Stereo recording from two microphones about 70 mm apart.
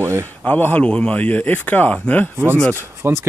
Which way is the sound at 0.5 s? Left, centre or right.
Left.